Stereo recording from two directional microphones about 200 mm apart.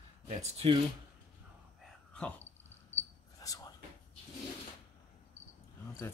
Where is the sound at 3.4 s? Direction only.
15° left (ahead or behind).